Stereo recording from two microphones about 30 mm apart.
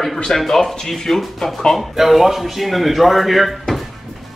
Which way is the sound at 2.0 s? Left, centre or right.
Centre.